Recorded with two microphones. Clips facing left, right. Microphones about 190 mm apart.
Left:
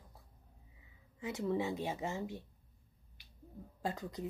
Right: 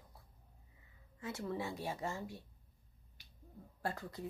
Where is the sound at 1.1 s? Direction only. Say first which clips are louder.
Left 5 dB; 15° left (ahead or behind).